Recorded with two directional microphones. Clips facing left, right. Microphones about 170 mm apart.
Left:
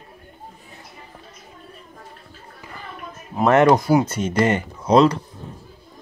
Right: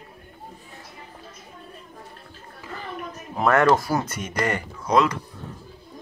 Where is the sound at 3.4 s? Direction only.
20° left (ahead or behind).